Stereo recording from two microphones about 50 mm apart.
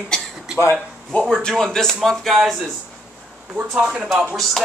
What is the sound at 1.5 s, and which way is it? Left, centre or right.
Speech, centre.